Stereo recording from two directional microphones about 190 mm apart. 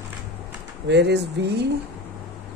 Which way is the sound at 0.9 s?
65° right (ahead or behind).